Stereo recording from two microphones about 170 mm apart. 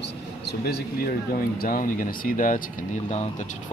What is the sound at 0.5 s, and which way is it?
Speech, 70° left (ahead or behind).